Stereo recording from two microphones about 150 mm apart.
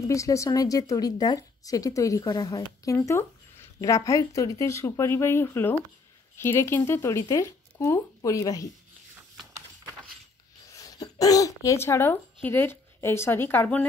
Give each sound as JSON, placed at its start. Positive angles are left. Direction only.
{"t": 0.0, "sound": "a woman's voice", "side_deg": 20}
{"t": 10.7, "sound": "speech", "side_deg": 25}